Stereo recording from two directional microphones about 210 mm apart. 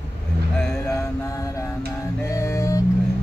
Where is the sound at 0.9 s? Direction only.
15° left (ahead or behind).